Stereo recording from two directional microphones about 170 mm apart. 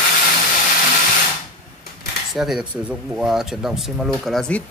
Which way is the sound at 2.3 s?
Centre (ahead or behind).